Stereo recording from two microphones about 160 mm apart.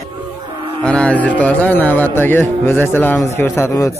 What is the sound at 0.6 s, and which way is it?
Music, 35° right (ahead or behind).